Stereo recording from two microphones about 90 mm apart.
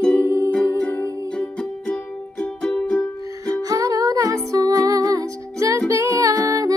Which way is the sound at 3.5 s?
40° right (ahead or behind).